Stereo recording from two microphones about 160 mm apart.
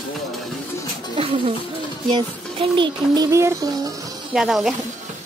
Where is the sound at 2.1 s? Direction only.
30° right (ahead or behind).